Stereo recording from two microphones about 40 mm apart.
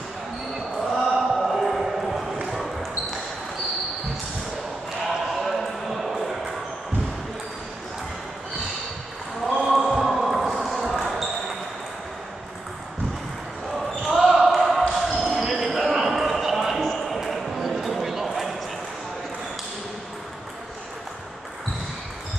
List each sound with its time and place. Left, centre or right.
0.7 s basketball bounce: centre
1.3 s a sound: centre
2.5 s basketball bounce: centre
5.0 s basketball bounce: centre
9.6 s basketball bounce: centre
14.1 s basketball bounce: centre